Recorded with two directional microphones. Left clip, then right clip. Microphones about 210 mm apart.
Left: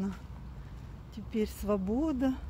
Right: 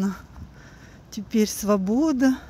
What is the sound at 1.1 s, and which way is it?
Speech, 30° right (ahead or behind).